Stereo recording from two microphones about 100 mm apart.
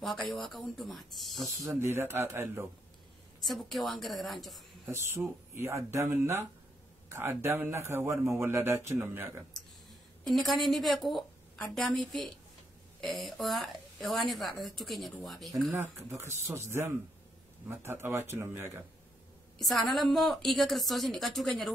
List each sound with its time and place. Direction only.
0.0 s a woman's voice: centre (ahead or behind)
1.7 s a man's voice: 25° right (ahead or behind)
3.4 s a woman's voice: centre (ahead or behind)
4.8 s a man's voice: 25° right (ahead or behind)
10.2 s a woman's voice: centre (ahead or behind)
16.1 s a man's voice: 25° right (ahead or behind)
19.6 s a woman's voice: 5° left (ahead or behind)